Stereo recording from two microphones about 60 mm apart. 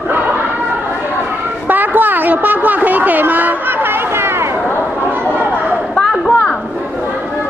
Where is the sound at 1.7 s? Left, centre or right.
Right.